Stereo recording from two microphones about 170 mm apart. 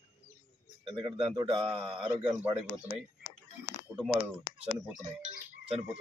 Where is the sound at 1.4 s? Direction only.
30° right (ahead or behind).